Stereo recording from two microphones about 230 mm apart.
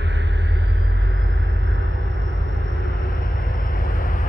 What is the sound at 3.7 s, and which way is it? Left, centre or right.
Vehicle, left.